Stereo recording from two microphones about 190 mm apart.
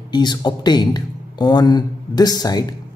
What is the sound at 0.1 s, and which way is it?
Speech, 25° left (ahead or behind).